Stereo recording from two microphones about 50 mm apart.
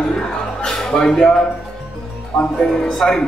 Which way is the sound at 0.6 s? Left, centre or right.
Centre.